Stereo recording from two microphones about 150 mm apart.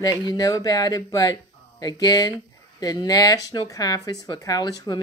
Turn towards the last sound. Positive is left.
turn(degrees=25)  # may be behind; listen again after turning